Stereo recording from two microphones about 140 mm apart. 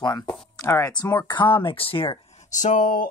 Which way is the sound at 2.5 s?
65° left (ahead or behind).